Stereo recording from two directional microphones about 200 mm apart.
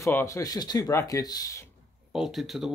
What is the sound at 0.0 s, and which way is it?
Speech, 15° left (ahead or behind).